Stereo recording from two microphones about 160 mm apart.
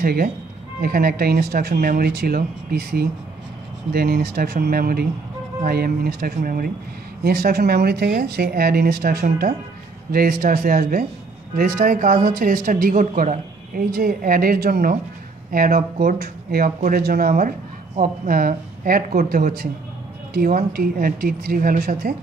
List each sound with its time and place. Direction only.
0.0 s speech: 70° right (ahead or behind)